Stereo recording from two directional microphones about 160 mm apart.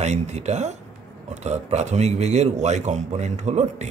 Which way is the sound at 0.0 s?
45° right (ahead or behind).